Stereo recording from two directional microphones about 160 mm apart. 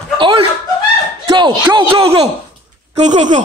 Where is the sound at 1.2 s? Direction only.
30° right (ahead or behind).